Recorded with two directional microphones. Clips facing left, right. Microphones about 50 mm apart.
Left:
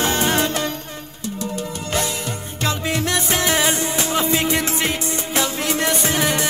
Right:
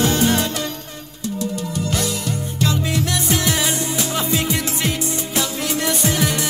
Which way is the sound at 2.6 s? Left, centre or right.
Left.